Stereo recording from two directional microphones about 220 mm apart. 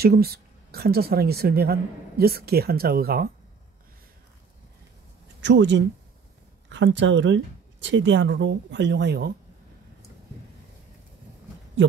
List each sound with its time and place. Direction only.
0.0 s speech: 45° right (ahead or behind)
5.4 s speech: 55° right (ahead or behind)